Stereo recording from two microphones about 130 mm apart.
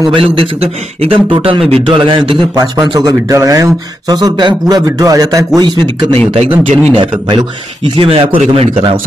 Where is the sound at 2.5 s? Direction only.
30° right (ahead or behind).